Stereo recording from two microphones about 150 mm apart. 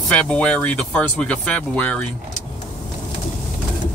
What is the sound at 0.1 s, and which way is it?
Speech, 10° left (ahead or behind).